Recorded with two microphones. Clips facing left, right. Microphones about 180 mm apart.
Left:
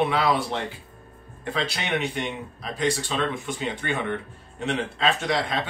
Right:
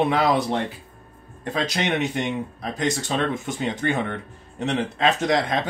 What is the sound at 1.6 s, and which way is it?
Speech, 45° right (ahead or behind).